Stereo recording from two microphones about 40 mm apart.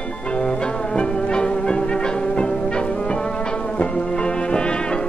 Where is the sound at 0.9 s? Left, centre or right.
Left.